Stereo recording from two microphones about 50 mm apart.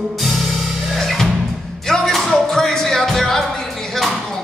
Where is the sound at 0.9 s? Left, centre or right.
Centre.